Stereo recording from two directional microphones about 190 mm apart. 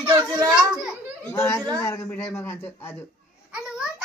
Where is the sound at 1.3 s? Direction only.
15° left (ahead or behind).